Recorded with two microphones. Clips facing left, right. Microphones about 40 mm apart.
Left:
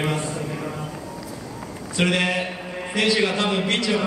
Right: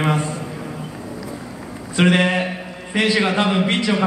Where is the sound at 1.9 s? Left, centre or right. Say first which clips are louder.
Right 5 dB; centre.